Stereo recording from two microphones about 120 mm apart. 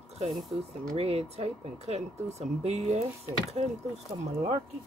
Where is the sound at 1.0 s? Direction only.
55° right (ahead or behind).